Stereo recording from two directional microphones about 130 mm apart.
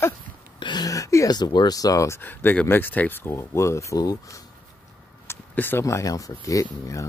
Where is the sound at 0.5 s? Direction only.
35° left (ahead or behind).